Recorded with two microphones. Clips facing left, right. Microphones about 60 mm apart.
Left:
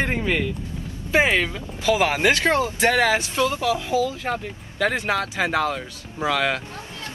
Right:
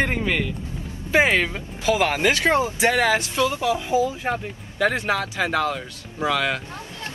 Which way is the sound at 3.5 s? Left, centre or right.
Right.